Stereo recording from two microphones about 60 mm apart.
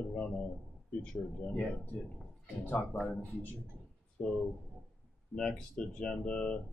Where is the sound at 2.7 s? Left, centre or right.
Left.